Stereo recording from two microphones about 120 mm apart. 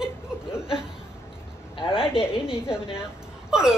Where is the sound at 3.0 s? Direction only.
5° right (ahead or behind).